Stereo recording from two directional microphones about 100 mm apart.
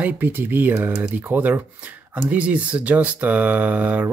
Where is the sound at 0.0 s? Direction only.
20° right (ahead or behind).